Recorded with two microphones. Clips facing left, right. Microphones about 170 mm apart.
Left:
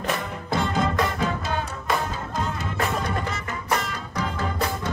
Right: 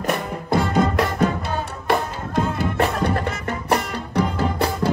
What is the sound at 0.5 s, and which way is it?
Music, 65° right (ahead or behind).